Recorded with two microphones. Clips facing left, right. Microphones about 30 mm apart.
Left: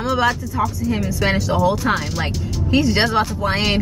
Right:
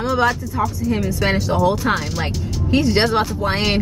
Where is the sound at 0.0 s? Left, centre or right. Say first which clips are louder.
Even; centre.